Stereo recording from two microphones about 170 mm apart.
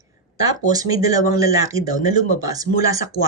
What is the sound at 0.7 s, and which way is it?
Speech, 20° right (ahead or behind).